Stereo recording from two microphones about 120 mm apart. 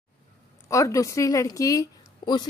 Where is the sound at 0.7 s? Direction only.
25° left (ahead or behind).